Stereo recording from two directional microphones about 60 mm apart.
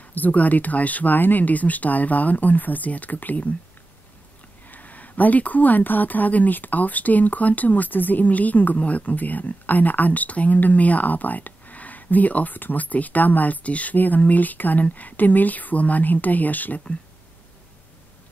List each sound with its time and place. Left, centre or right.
0.0 s speech: left
4.6 s speech: left